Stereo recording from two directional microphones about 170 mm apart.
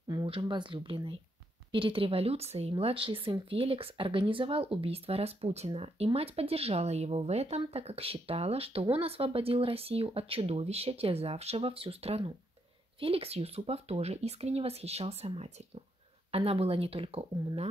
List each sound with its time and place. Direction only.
0.1 s speech: 30° right (ahead or behind)